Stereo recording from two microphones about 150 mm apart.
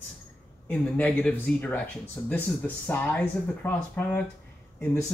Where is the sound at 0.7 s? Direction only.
10° left (ahead or behind).